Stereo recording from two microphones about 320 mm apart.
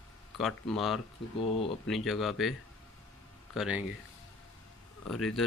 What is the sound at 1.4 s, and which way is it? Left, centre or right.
Speech, centre.